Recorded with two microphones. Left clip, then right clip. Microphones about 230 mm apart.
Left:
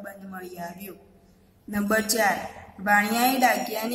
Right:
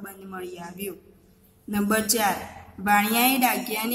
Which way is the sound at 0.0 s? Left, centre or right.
Centre.